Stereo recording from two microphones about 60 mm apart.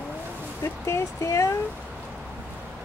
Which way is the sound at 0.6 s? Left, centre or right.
Left.